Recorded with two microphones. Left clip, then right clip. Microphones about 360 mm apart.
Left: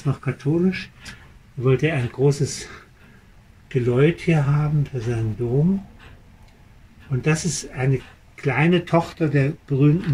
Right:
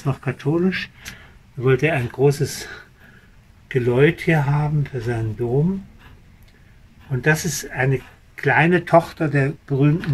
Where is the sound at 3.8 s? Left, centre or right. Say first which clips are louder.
Right 2 dB; right.